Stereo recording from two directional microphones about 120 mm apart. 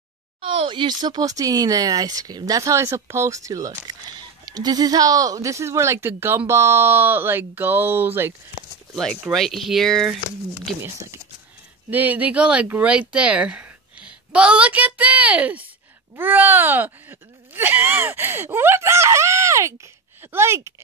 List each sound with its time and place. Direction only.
0.4 s speech: 50° right (ahead or behind); by 8.3 s 15° right (ahead or behind)
8.9 s speech: 5° left (ahead or behind)
10.8 s speech: 25° right (ahead or behind)